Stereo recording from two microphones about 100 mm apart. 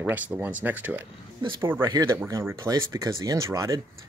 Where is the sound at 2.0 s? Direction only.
30° right (ahead or behind).